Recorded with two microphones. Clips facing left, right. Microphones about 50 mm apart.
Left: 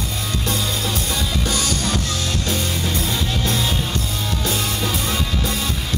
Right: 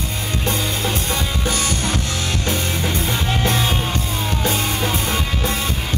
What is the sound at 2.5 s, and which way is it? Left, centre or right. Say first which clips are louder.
Music: right 2 dB; right.